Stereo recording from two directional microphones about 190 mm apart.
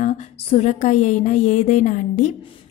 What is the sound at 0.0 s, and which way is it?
A woman's voice, 35° left (ahead or behind).